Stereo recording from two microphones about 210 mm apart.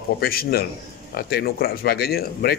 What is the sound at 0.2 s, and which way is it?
Speech, 45° left (ahead or behind).